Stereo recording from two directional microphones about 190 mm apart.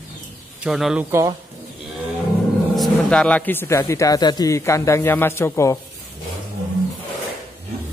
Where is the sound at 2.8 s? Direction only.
5° left (ahead or behind).